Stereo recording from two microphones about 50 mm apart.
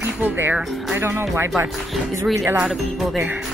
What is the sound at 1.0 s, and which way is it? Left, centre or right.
Speech, right.